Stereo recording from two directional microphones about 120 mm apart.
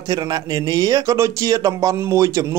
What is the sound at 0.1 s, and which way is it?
Speech, 35° right (ahead or behind).